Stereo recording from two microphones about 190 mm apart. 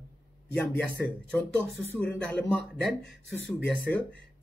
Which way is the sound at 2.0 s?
5° left (ahead or behind).